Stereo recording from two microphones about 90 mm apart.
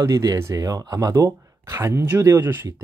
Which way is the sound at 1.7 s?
30° right (ahead or behind).